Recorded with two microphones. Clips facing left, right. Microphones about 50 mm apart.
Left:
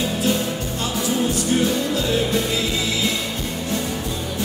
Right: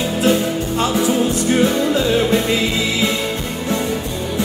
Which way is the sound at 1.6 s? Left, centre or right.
Right.